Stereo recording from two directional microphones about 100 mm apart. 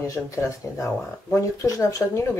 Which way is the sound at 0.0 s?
30° left (ahead or behind).